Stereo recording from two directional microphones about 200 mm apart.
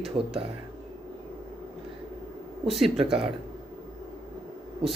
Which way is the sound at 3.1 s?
25° right (ahead or behind).